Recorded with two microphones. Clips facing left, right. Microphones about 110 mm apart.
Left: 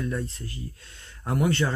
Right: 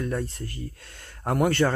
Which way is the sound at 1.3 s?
55° right (ahead or behind).